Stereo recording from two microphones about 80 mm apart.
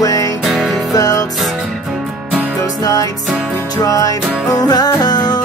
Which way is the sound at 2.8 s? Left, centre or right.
Left.